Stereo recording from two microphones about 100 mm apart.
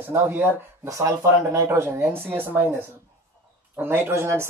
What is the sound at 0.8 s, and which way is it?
Speech, 35° right (ahead or behind).